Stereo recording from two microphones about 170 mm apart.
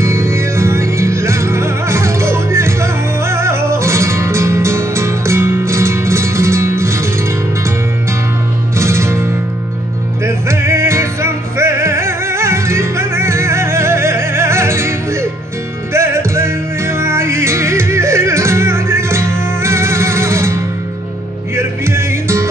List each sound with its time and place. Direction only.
0.0 s music: 15° right (ahead or behind)
8.7 s music: 15° right (ahead or behind)
10.2 s music: 15° right (ahead or behind)
21.5 s music: 15° right (ahead or behind)